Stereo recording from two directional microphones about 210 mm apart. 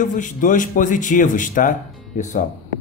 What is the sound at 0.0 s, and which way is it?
A man's voice, 40° left (ahead or behind).